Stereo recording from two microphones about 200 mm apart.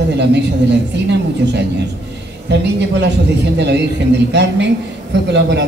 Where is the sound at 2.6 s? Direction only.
55° right (ahead or behind).